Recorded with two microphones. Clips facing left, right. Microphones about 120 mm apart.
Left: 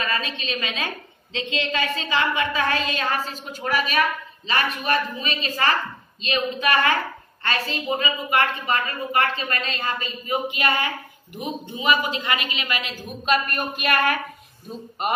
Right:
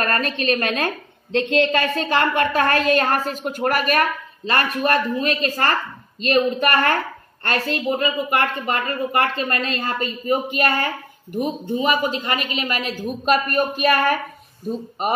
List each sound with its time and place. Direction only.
0.0 s a woman's voice: 55° right (ahead or behind)
6.3 s a woman's voice: 45° right (ahead or behind)